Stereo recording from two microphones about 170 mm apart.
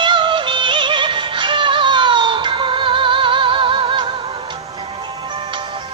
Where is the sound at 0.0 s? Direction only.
30° right (ahead or behind).